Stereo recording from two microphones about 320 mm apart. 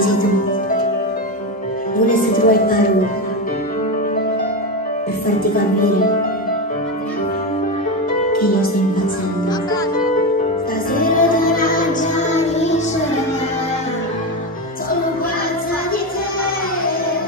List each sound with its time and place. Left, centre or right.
2.0 s speech: left
8.4 s music: left
11.0 s music: left